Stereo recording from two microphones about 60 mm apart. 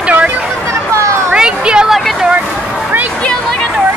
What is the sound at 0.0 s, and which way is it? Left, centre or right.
Chatter, right.